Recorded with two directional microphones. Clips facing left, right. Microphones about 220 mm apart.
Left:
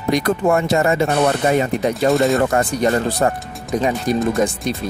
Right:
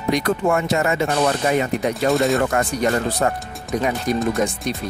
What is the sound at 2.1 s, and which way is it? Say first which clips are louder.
Speech: left 2 dB; centre (ahead or behind).